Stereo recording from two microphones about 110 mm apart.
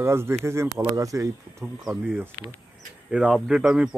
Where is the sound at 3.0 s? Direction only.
5° right (ahead or behind).